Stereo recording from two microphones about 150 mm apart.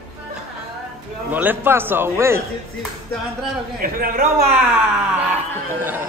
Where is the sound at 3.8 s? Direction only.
75° right (ahead or behind).